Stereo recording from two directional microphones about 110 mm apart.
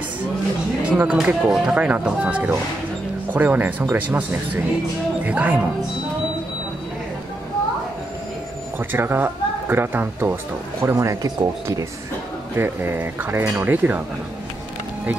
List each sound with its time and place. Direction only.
0.8 s speech: 10° right (ahead or behind)
8.7 s speech: 20° right (ahead or behind)
12.5 s speech: 20° right (ahead or behind)